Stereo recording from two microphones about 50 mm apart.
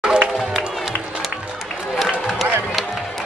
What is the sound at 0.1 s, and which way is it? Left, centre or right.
Music, centre.